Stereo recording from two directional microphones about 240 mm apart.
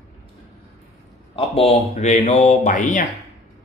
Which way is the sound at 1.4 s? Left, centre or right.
Left.